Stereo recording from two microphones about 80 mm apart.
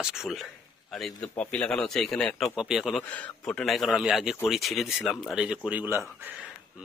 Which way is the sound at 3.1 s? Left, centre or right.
Centre.